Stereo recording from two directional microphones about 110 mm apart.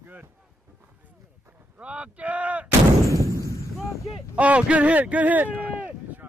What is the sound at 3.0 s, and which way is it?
Gunshot, 30° right (ahead or behind).